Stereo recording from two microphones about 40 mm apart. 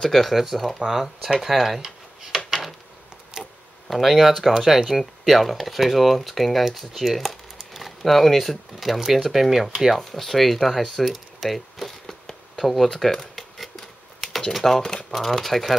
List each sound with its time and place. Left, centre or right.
0.0 s speech: centre
0.4 s speech: centre
2.3 s a sound: centre
3.4 s a sound: centre
3.9 s speech: centre
11.3 s a sound: centre
13.0 s speech: centre
13.7 s typewriter: centre
14.5 s speech: centre
14.8 s speech: centre
15.0 s speech: centre